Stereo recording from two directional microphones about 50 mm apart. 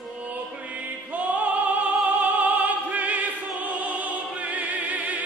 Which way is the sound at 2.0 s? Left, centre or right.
Right.